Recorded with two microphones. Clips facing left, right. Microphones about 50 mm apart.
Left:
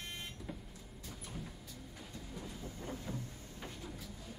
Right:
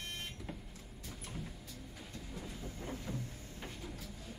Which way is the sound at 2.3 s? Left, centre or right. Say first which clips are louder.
Even; centre.